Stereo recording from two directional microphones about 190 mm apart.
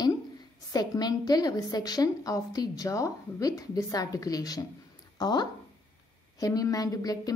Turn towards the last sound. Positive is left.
turn(degrees=20)  # may be behind; listen again after turning